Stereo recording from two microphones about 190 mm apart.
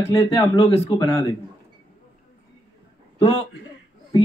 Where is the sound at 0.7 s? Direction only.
35° left (ahead or behind).